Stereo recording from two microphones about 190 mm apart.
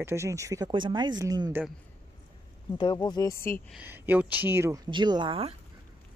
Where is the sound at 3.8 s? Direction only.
10° right (ahead or behind).